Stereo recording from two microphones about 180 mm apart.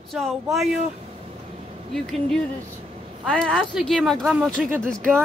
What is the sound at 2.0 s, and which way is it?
Speech, 5° left (ahead or behind).